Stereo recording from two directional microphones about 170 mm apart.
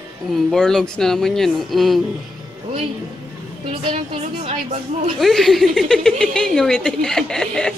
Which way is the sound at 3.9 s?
35° right (ahead or behind).